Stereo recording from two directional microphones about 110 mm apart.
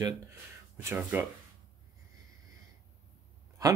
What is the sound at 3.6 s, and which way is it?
Speech, 30° right (ahead or behind).